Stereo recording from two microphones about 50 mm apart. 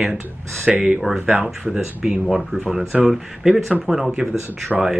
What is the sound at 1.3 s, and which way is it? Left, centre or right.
Speech, right.